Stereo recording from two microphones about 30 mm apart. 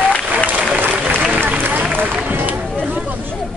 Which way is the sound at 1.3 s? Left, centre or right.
Right.